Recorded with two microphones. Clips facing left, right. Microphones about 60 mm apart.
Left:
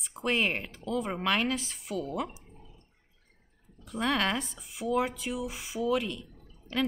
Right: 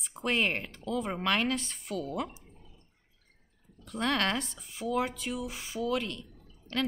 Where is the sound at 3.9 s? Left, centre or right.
Centre.